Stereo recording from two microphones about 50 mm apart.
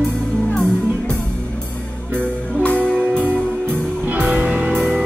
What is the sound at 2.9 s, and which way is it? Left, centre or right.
Music, right.